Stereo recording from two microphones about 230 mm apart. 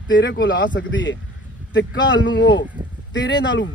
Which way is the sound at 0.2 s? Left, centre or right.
Left.